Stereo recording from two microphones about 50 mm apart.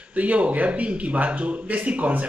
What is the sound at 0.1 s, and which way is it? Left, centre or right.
A man's voice, right.